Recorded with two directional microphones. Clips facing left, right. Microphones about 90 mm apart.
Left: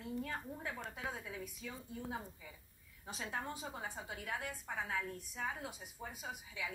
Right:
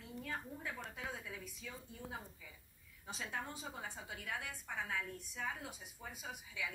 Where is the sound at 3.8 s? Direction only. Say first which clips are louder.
Left 2 dB; 15° left (ahead or behind).